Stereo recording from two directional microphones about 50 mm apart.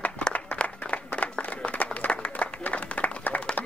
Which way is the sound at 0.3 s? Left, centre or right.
Left.